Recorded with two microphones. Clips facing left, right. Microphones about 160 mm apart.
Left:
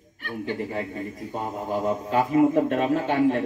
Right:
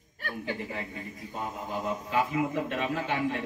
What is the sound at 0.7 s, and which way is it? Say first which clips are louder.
A man's voice: left 7 dB; 40° left (ahead or behind).